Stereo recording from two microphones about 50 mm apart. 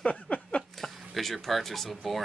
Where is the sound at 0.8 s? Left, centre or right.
Centre.